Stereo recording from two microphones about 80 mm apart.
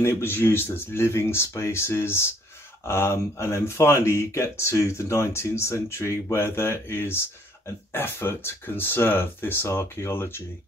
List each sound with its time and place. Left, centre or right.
0.0 s speech: left